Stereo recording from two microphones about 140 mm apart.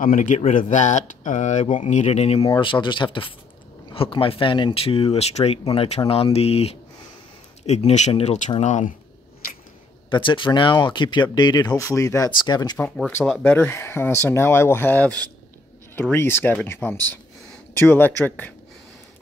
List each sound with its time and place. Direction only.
0.0 s speech: 70° left (ahead or behind); by 2.4 s 50° left (ahead or behind)
2.4 s speech: 30° left (ahead or behind); by 8.9 s 60° left (ahead or behind)
10.0 s speech: 35° left (ahead or behind)
12.7 s speech: 10° left (ahead or behind)